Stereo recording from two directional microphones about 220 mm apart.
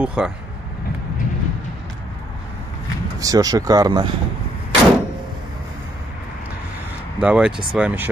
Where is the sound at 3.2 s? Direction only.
15° right (ahead or behind).